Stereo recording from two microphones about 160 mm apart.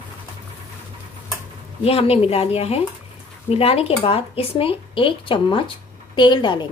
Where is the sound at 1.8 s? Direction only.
40° left (ahead or behind).